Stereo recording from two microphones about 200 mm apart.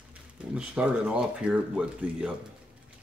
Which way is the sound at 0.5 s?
5° right (ahead or behind).